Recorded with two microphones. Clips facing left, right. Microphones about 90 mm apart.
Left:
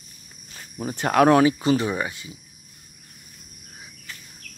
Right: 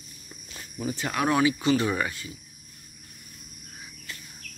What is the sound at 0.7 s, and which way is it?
Speech, 50° left (ahead or behind).